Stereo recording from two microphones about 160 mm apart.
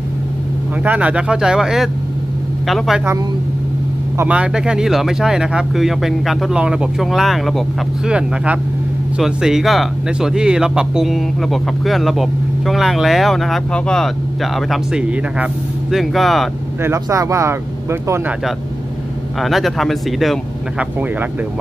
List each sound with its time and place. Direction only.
0.8 s speech: 10° right (ahead or behind)
4.2 s speech: 10° right (ahead or behind)
16.8 s speech: 20° right (ahead or behind)
19.4 s speech: centre (ahead or behind)